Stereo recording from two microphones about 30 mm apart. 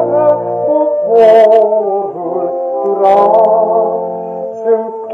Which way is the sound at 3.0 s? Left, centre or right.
Left.